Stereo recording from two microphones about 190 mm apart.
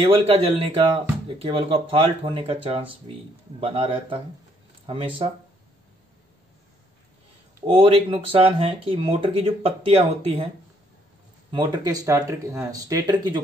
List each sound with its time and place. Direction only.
0.0 s speech: 30° right (ahead or behind)
7.6 s speech: 30° right (ahead or behind)
11.5 s speech: 20° right (ahead or behind)